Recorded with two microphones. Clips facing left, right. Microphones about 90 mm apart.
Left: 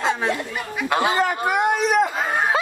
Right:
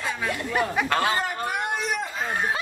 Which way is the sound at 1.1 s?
90° left.